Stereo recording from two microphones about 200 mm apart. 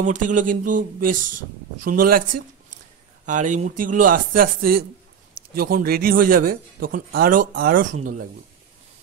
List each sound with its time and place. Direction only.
0.0 s speech: 40° right (ahead or behind)
3.3 s speech: 40° right (ahead or behind)